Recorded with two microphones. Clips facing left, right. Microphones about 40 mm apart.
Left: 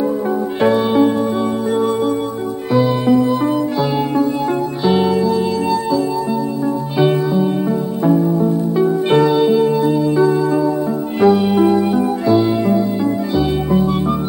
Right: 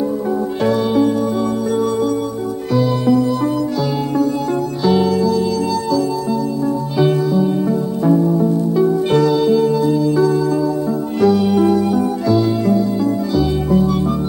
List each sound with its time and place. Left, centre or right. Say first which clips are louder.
0.6 s music: left 3 dB; left
2.7 s music: left 1 dB; left
4.8 s music: even; left